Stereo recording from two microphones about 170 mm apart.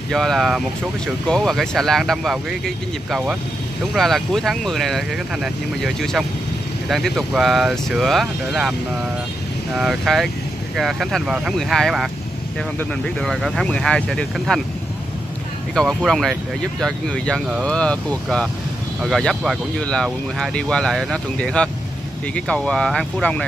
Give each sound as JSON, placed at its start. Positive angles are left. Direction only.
{"t": 0.1, "sound": "speech", "side_deg": 0}
{"t": 9.8, "sound": "speech", "side_deg": 0}
{"t": 15.7, "sound": "speech", "side_deg": 0}